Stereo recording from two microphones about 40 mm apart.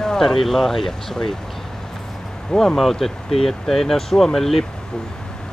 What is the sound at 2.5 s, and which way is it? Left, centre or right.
Speech, centre.